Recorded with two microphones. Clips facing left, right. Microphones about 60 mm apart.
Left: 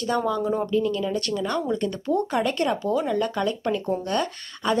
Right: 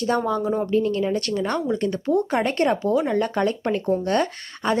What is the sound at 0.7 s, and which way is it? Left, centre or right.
Speech, right.